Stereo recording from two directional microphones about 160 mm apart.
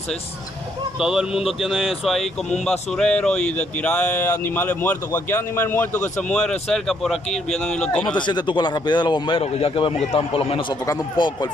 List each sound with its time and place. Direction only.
0.9 s speech: 5° right (ahead or behind)
8.1 s speech: 30° left (ahead or behind)